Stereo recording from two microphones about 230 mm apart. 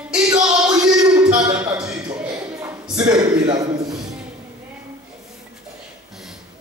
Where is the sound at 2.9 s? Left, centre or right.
Centre.